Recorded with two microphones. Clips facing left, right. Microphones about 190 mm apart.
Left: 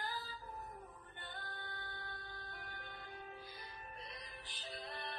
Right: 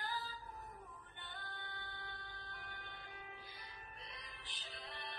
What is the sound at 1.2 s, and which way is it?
Music, 40° left (ahead or behind).